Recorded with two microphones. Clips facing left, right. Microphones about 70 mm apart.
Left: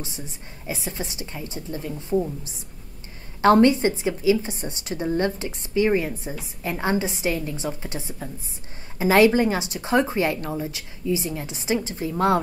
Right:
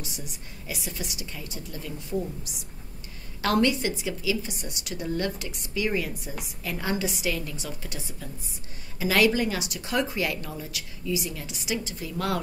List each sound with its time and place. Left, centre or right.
0.0 s a woman's voice: left